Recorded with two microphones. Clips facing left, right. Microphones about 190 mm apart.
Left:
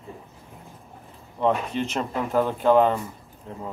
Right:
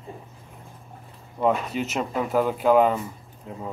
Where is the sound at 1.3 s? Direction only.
5° right (ahead or behind).